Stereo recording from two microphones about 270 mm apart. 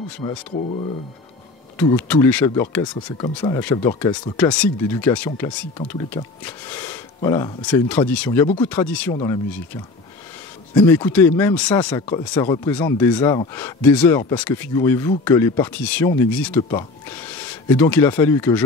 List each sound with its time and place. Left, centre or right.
0.2 s speech: centre
1.8 s speech: centre
10.7 s speech: centre